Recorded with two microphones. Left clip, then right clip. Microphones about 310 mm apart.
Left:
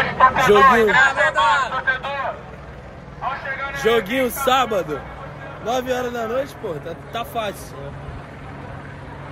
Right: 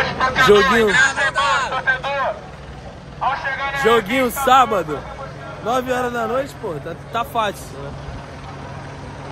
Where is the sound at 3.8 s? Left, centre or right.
Centre.